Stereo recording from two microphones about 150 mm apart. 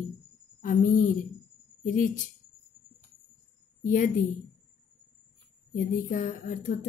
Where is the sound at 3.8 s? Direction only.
60° left (ahead or behind).